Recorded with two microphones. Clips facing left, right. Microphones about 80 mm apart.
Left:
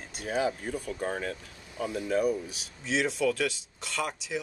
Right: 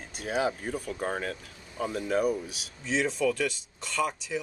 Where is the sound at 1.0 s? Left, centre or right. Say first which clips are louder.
Right 1 dB; right.